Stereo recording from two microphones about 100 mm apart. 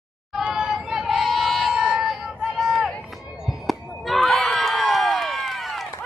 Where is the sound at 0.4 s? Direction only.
5° right (ahead or behind).